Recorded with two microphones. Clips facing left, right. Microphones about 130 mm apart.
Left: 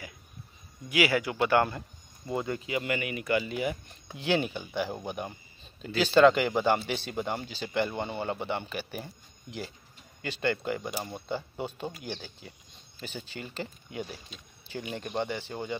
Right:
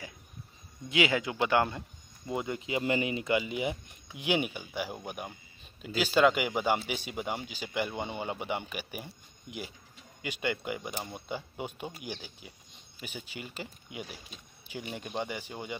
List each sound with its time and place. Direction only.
0.8 s speech: 25° right (ahead or behind)